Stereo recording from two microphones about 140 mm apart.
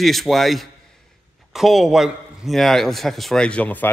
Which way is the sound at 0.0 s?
Centre (ahead or behind).